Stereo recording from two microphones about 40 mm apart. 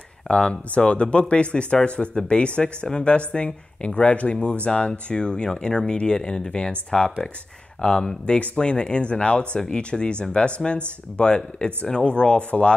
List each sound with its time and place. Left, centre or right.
0.3 s speech: left